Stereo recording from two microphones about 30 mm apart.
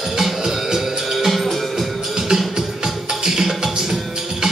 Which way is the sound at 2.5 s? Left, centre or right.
Right.